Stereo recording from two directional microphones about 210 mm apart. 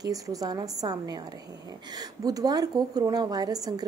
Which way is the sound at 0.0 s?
15° right (ahead or behind).